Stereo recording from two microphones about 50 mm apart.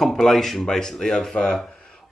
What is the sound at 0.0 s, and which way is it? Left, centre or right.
Speech, centre.